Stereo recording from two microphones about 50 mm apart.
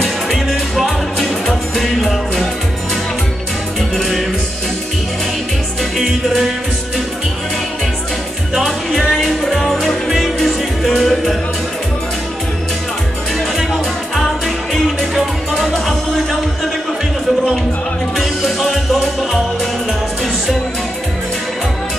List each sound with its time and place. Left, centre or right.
0.0 s music: centre
5.9 s music: centre
8.9 s music: centre
14.1 s music: centre
18.1 s music: centre